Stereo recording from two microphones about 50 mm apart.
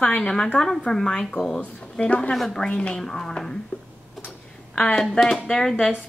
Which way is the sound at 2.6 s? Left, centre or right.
Left.